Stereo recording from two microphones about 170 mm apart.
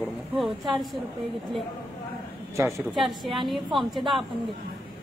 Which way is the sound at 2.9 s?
Centre (ahead or behind).